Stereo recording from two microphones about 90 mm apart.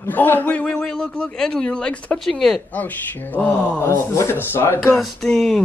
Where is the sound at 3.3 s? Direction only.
15° left (ahead or behind).